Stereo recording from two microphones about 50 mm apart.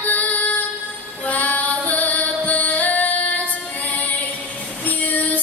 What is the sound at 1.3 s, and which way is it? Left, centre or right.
Music, left.